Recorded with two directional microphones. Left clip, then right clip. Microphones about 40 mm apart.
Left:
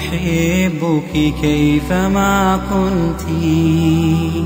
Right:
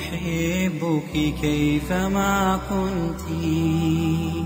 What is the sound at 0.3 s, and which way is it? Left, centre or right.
Mantra, right.